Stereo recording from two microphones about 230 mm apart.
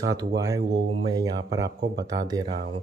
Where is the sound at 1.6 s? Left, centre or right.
Right.